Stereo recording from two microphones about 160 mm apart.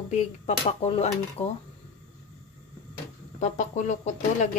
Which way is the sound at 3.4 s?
50° left (ahead or behind).